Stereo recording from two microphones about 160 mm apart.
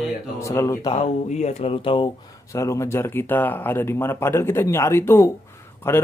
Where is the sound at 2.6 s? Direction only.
20° left (ahead or behind).